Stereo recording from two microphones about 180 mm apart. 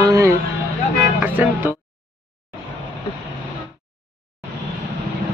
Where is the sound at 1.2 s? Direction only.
10° right (ahead or behind).